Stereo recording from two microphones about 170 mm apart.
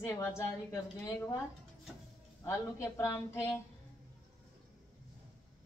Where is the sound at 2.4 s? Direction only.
15° left (ahead or behind).